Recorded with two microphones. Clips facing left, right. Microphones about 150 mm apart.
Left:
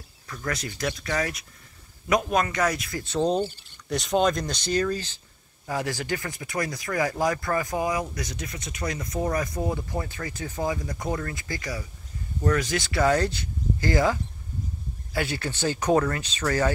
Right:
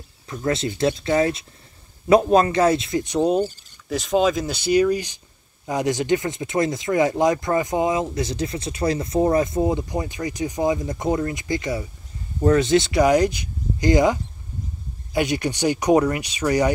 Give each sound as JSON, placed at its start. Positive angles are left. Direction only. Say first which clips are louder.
{"t": 0.3, "sound": "speech", "louder": "right 8 dB", "side_deg": -25}